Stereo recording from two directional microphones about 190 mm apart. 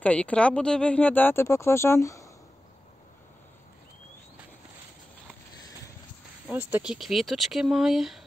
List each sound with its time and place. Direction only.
0.0 s speech: 5° left (ahead or behind)
6.5 s speech: 5° right (ahead or behind)